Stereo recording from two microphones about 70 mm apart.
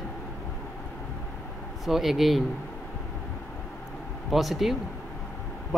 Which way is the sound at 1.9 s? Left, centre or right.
Centre.